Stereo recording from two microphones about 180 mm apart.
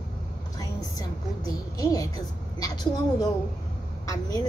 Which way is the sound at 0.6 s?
20° left (ahead or behind).